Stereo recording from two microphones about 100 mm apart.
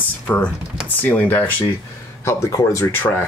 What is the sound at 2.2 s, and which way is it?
Speech, 30° left (ahead or behind).